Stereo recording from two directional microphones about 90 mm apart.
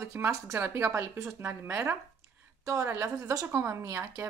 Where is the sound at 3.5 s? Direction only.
30° right (ahead or behind).